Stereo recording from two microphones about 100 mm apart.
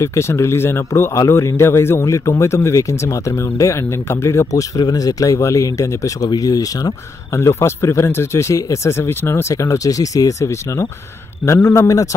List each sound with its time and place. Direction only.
0.0 s speech: 30° left (ahead or behind)
7.3 s speech: 25° left (ahead or behind)